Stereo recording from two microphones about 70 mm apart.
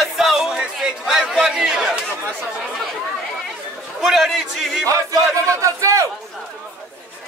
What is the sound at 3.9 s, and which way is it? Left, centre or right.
Speech, centre.